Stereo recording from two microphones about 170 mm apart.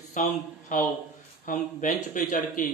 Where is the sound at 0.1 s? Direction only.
50° left (ahead or behind).